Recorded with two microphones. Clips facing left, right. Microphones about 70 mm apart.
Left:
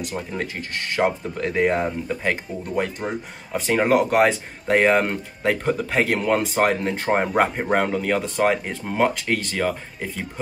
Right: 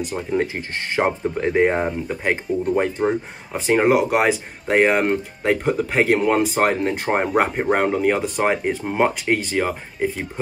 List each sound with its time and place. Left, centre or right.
0.1 s speech: centre
0.6 s speech: right